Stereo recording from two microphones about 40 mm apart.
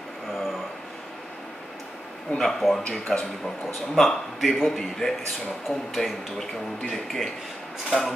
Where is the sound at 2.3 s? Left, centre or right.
Centre.